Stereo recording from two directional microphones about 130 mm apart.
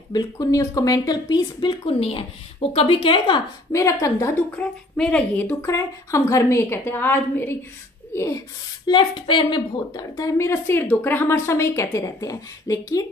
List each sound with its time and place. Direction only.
0.1 s speech: 30° left (ahead or behind)
3.7 s a woman's voice: 25° left (ahead or behind)
4.6 s a woman's voice: 5° left (ahead or behind)
8.8 s a woman's voice: 40° left (ahead or behind)